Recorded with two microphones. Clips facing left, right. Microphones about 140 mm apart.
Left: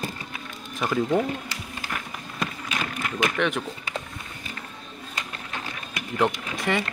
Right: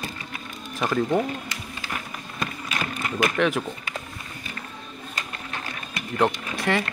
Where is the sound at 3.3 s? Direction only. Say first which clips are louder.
Right 3 dB; centre (ahead or behind).